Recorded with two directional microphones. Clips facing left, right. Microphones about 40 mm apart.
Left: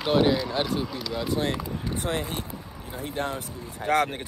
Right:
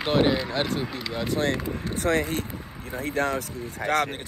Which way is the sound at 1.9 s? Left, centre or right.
Right.